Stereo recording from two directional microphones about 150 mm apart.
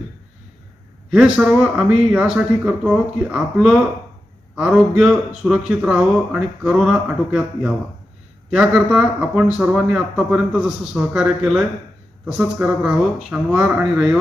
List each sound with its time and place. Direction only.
1.1 s a man's voice: 5° right (ahead or behind)